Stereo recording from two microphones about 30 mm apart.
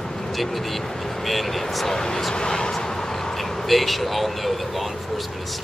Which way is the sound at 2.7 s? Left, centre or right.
Centre.